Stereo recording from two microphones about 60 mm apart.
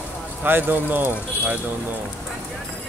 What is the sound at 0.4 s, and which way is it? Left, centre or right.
Speech, right.